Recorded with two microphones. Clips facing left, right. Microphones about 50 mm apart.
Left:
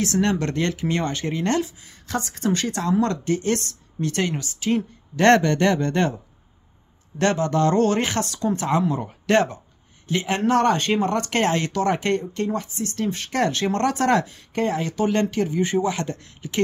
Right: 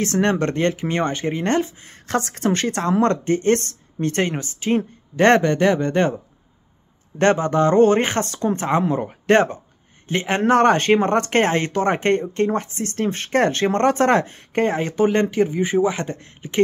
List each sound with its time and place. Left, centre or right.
0.0 s speech: right
1.8 s a woman's voice: right; by 6.0 s centre
7.2 s a woman's voice: right